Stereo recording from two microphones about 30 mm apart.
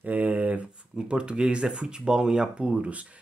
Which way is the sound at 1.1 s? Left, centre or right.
Right.